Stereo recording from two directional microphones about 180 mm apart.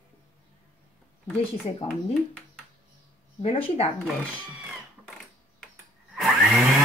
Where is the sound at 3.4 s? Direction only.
35° left (ahead or behind).